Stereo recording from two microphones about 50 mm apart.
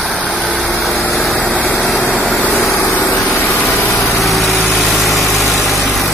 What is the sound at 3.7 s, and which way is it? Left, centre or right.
Vehicle, centre.